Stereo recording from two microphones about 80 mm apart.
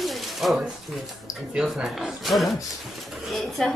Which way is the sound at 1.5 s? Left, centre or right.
Centre.